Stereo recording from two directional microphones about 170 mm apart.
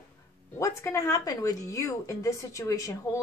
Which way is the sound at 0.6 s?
20° left (ahead or behind).